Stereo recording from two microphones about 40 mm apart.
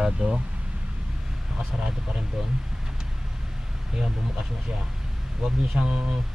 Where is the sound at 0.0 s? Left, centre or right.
Centre.